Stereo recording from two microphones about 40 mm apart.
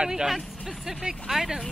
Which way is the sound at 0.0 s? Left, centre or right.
Centre.